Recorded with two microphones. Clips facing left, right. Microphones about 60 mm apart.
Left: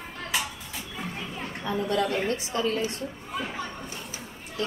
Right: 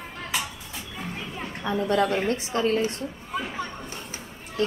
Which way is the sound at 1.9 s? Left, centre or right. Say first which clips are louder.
Right 3 dB; right.